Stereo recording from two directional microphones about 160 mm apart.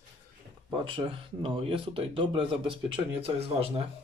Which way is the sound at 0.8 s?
35° right (ahead or behind).